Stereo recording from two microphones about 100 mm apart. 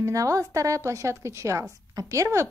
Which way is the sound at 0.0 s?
35° right (ahead or behind).